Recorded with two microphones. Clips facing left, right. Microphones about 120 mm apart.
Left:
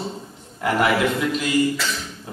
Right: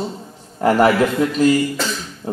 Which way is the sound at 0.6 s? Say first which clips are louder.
Right 5 dB; 40° right (ahead or behind).